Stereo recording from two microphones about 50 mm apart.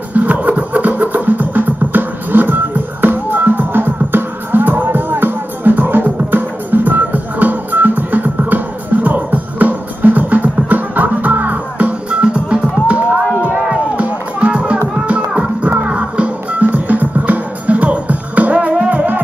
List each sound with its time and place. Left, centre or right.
0.1 s music: right
12.1 s music: right
12.8 s a sound: right
13.9 s music: right